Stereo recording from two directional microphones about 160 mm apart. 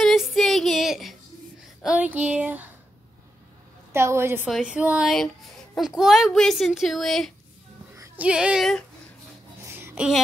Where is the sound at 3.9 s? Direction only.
15° right (ahead or behind).